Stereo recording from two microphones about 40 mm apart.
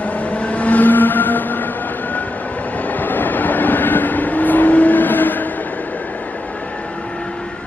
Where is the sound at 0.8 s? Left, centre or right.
Left.